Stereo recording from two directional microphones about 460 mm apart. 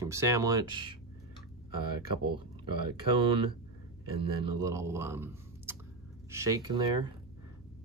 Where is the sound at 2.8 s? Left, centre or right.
Centre.